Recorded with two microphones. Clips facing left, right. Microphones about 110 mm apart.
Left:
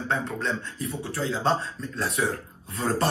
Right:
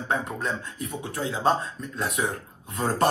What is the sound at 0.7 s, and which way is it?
A man's voice, 20° right (ahead or behind).